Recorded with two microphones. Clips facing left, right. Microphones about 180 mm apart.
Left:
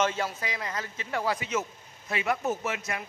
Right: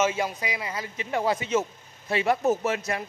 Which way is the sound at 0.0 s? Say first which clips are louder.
Right 3 dB; 10° right (ahead or behind).